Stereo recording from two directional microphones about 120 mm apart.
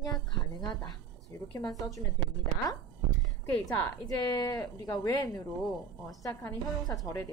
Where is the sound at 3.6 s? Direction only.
30° left (ahead or behind).